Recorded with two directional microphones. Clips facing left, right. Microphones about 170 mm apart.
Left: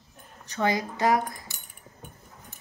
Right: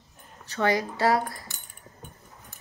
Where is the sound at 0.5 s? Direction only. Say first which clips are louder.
Right 1 dB; 15° left (ahead or behind).